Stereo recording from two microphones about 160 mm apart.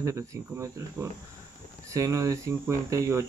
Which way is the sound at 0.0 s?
20° right (ahead or behind).